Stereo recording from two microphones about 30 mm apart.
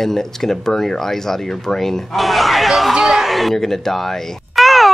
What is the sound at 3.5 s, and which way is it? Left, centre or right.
Speech, centre.